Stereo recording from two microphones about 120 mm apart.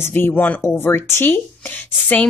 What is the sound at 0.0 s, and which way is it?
A woman's voice, 15° left (ahead or behind).